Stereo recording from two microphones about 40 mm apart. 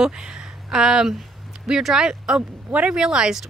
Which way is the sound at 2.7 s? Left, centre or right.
Right.